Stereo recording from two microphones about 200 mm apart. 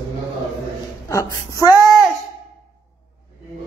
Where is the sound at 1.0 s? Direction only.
15° left (ahead or behind).